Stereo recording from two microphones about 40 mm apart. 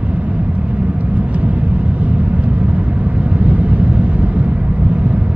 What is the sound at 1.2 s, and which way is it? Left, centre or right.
Vehicle, right.